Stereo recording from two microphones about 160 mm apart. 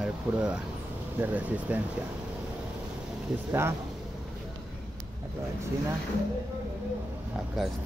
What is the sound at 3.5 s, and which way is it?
Speech, 15° right (ahead or behind).